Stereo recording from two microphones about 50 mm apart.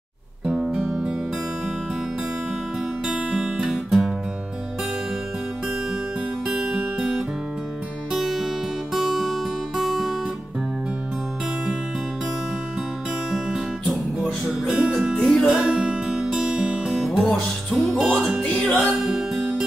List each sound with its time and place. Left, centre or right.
0.5 s music: centre
3.1 s music: centre
6.7 s music: centre
13.3 s guitar: centre
14.2 s music: centre
14.8 s music: right
15.1 s music: centre
15.5 s music: centre
16.8 s music: centre
18.9 s music: centre